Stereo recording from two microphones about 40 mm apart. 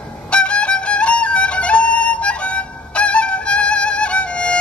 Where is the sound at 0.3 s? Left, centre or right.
Left.